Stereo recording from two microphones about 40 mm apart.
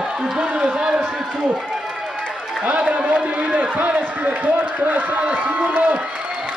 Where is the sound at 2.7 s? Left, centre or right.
Right.